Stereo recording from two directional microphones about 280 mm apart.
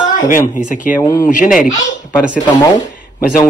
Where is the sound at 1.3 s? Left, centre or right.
Left.